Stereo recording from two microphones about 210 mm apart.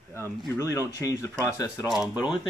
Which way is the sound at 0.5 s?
15° left (ahead or behind).